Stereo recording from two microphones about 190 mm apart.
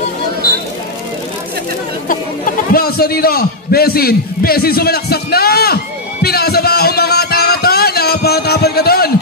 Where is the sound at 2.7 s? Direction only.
55° left (ahead or behind).